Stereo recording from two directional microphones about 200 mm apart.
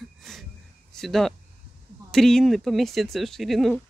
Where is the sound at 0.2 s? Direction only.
Centre (ahead or behind).